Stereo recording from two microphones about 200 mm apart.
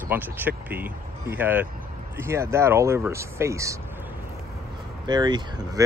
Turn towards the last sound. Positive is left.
turn(degrees=-20)  # may be behind; listen again after turning